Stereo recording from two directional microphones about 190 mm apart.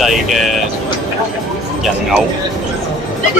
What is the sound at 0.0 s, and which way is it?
Speech, centre (ahead or behind).